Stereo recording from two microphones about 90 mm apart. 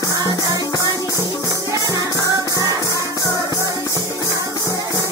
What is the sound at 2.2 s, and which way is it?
Music, 40° right (ahead or behind).